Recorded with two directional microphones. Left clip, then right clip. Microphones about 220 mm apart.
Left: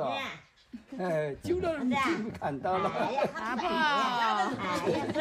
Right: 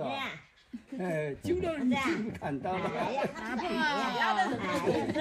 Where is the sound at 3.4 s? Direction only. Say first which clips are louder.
Left 3 dB; centre (ahead or behind).